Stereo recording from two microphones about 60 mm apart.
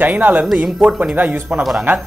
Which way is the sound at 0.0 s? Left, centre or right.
Right.